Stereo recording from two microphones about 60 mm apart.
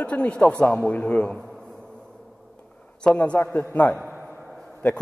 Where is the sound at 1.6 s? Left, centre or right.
Centre.